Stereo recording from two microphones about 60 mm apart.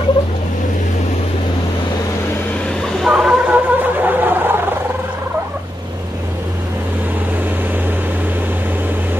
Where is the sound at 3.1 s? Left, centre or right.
Centre.